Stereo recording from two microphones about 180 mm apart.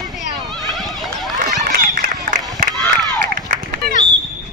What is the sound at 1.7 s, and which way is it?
Run, 55° right (ahead or behind).